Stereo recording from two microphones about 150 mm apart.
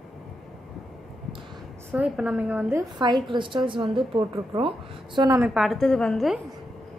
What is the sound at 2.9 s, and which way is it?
A woman's voice, 30° right (ahead or behind).